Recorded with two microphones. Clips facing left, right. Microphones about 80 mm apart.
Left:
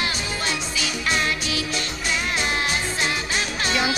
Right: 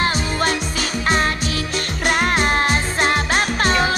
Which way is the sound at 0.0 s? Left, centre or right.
Right.